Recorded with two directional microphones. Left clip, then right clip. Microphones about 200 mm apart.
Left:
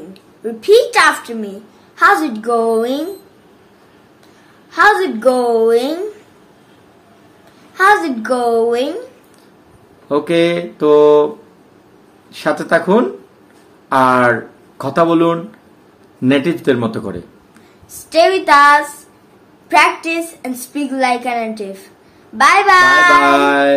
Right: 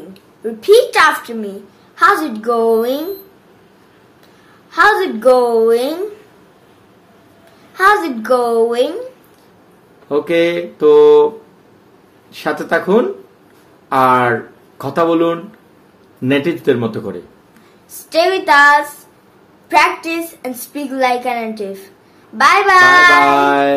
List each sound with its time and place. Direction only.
0.4 s a woman's voice: centre (ahead or behind)
4.6 s a woman's voice: centre (ahead or behind)
7.7 s a woman's voice: centre (ahead or behind)
10.0 s speech: 20° left (ahead or behind)
12.3 s speech: 20° left (ahead or behind)
17.9 s a woman's voice: centre (ahead or behind)
23.2 s speech: 20° left (ahead or behind)